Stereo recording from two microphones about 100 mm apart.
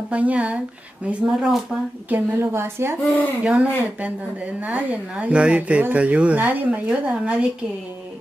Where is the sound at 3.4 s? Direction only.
15° right (ahead or behind).